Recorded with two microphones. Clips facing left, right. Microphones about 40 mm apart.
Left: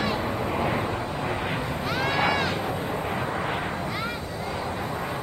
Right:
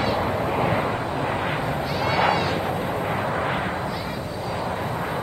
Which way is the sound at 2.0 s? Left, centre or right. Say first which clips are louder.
Right 4 dB; right.